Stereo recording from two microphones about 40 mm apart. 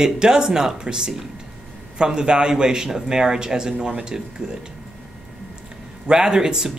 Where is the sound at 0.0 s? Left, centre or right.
Centre.